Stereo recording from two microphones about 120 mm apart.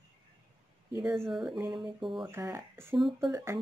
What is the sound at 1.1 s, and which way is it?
Speech, 5° left (ahead or behind).